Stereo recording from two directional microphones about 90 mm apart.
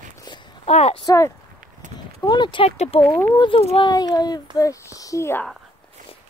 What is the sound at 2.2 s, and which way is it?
A child's voice, 55° left (ahead or behind).